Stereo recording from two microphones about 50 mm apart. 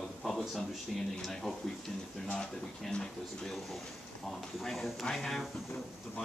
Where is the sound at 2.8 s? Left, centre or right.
Centre.